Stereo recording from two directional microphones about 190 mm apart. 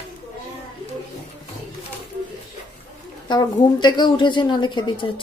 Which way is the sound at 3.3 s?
25° left (ahead or behind).